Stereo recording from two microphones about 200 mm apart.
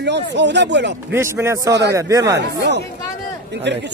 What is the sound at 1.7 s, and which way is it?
Speech, 55° right (ahead or behind).